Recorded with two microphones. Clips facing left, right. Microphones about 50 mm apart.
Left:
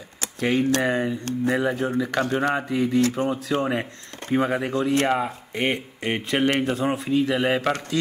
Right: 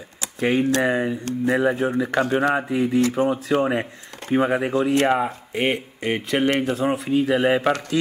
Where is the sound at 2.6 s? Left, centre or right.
Centre.